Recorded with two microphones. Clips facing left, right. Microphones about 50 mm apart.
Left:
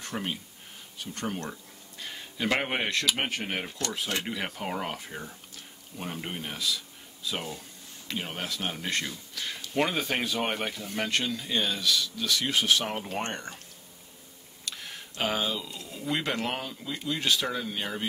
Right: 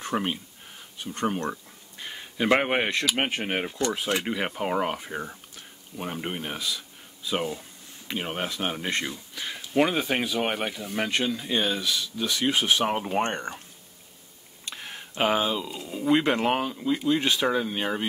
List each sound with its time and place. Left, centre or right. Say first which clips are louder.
0.0 s speech: right 6 dB; right
14.6 s speech: right 2 dB; right